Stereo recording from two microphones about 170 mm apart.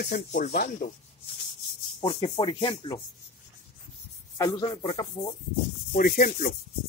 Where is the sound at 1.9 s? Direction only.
30° left (ahead or behind).